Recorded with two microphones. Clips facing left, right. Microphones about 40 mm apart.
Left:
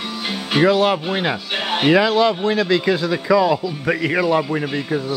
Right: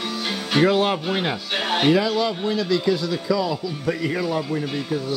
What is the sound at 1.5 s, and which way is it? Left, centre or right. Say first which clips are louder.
Music: even; centre.